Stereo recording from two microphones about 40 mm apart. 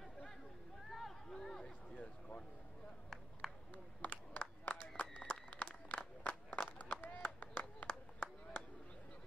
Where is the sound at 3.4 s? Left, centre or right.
Centre.